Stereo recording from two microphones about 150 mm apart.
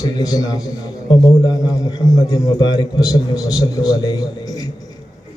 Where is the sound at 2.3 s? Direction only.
25° left (ahead or behind).